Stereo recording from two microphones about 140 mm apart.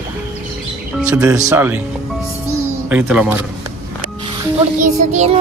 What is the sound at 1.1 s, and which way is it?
Speech, 25° right (ahead or behind).